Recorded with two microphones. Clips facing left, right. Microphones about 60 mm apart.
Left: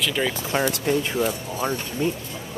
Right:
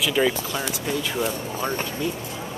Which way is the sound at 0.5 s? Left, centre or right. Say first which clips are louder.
Left 5 dB; left.